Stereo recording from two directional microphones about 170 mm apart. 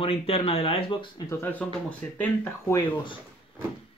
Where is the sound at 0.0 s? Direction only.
35° left (ahead or behind).